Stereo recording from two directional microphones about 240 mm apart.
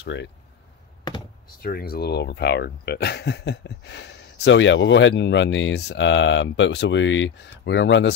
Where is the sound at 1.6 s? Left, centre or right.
Left.